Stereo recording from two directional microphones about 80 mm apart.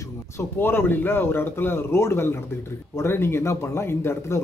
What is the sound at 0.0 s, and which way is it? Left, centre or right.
A man's voice, left.